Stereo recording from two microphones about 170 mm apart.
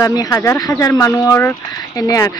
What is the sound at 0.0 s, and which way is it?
Speech, 20° left (ahead or behind).